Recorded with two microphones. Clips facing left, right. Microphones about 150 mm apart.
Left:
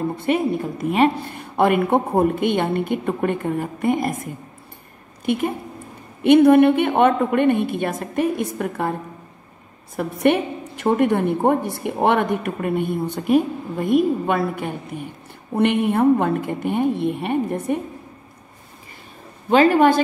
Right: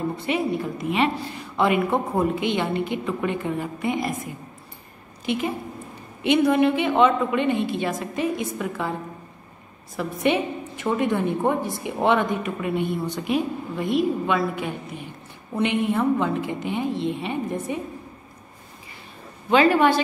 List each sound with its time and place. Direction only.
0.2 s a woman's voice: 50° left (ahead or behind)
9.9 s a woman's voice: 60° left (ahead or behind)
19.5 s speech: 45° left (ahead or behind)